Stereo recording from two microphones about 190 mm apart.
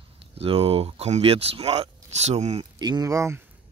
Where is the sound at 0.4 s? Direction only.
30° right (ahead or behind).